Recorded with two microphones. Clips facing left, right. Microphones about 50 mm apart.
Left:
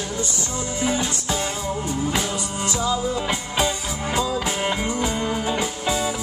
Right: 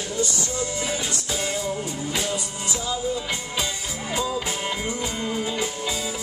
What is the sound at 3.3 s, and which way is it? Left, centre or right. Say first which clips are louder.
Music: left 5 dB; left.